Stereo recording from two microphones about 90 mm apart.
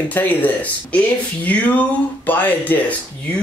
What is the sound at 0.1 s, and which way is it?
Speech, 20° left (ahead or behind).